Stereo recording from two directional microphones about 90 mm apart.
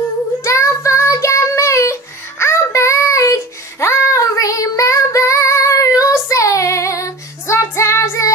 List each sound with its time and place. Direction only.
0.4 s child singing: 35° left (ahead or behind)